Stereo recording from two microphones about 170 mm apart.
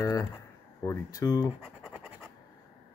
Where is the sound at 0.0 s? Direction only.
20° left (ahead or behind).